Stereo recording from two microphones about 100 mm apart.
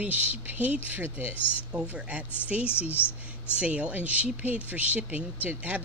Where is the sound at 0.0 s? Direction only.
15° right (ahead or behind).